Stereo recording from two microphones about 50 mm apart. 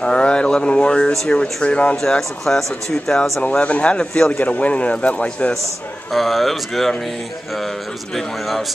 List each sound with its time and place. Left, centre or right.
0.0 s a man's voice: left
2.0 s speech: centre
3.4 s a man's voice: left
6.1 s speech: centre